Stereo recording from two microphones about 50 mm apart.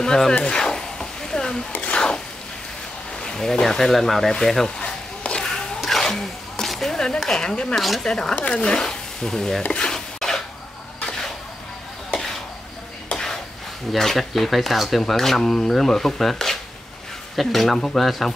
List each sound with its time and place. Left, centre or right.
0.0 s a sound: centre
3.2 s speech: centre
4.6 s sizzle: left
5.8 s zipper: centre
7.7 s speech: centre
8.1 s speech: centre
9.7 s stir: centre
9.9 s a sound: centre
13.1 s a sound: centre
13.9 s speech: centre